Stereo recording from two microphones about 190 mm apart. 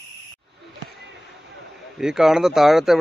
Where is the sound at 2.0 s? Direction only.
5° right (ahead or behind).